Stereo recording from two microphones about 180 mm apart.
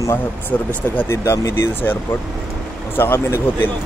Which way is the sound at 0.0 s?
15° left (ahead or behind).